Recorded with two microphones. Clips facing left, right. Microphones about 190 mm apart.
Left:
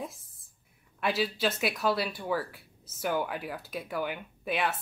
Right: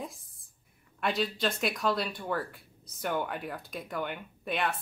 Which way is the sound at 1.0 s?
5° left (ahead or behind).